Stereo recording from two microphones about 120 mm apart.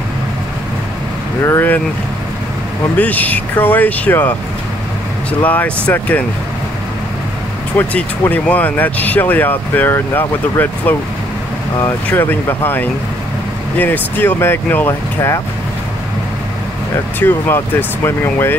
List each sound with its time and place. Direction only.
1.4 s speech: 20° left (ahead or behind)
3.0 s speech: 15° left (ahead or behind)
5.4 s speech: 15° left (ahead or behind)
7.7 s speech: 15° left (ahead or behind)
17.2 s speech: 20° left (ahead or behind)